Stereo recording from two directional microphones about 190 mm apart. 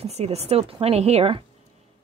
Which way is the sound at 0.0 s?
35° right (ahead or behind).